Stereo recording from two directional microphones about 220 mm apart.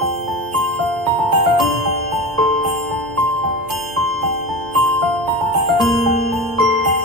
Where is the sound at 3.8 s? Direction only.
Centre (ahead or behind).